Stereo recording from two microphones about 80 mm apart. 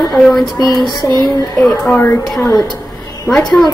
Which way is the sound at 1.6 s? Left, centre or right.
Centre.